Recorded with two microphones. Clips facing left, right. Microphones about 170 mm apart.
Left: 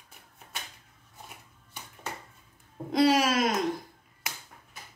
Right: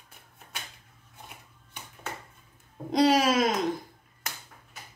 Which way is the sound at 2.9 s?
20° right (ahead or behind).